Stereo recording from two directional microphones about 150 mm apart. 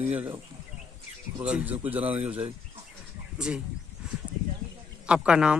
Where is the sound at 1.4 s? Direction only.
10° right (ahead or behind).